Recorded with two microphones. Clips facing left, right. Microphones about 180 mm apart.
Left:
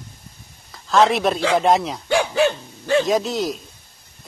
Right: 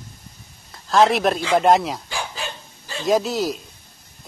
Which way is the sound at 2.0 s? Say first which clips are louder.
Left 13 dB; 70° left (ahead or behind).